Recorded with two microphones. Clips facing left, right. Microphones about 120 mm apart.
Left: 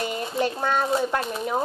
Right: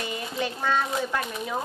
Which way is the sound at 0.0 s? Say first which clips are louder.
Left 5 dB; 35° left (ahead or behind).